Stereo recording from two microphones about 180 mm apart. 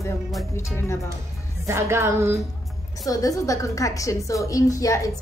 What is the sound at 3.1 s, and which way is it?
A woman's voice, 20° left (ahead or behind).